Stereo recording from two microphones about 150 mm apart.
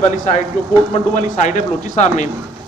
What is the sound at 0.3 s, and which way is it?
Speech, 50° left (ahead or behind).